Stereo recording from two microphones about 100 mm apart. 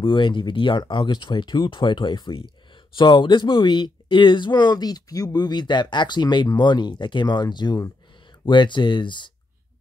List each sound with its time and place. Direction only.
0.0 s speech: 55° left (ahead or behind)